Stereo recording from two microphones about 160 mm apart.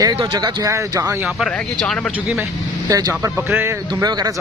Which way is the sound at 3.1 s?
15° right (ahead or behind).